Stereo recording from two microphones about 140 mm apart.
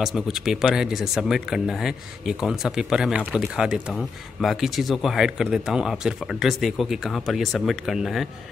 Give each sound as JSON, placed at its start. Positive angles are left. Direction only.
{"t": 0.0, "sound": "speech", "side_deg": 0}